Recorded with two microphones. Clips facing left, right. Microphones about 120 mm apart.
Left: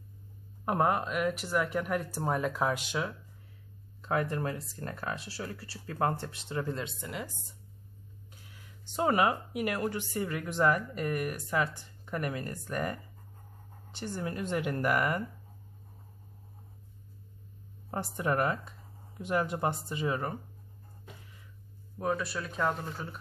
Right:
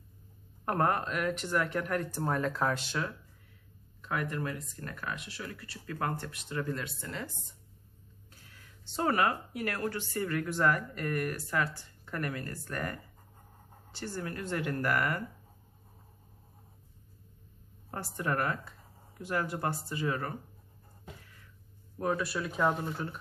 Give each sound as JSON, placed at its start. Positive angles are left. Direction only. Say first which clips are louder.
{"t": 0.7, "sound": "speech", "louder": "left 1 dB", "side_deg": 5}
{"t": 4.0, "sound": "speech", "louder": "left 3 dB", "side_deg": 30}
{"t": 17.9, "sound": "speech", "louder": "left 3 dB", "side_deg": 20}
{"t": 21.9, "sound": "speech", "louder": "right 1 dB", "side_deg": 0}